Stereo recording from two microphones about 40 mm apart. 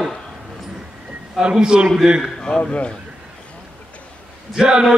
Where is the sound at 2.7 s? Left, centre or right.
Left.